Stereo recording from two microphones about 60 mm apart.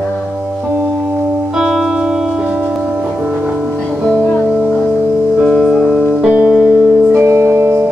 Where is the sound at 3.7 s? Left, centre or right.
Centre.